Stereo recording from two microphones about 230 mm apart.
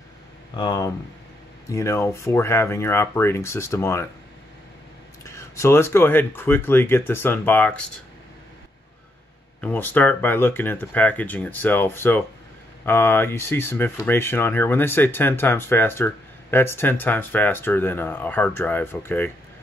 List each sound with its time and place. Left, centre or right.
0.6 s speech: centre
5.2 s speech: centre
9.6 s speech: centre